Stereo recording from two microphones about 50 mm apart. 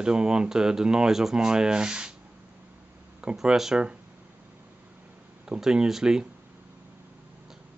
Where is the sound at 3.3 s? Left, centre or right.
Centre.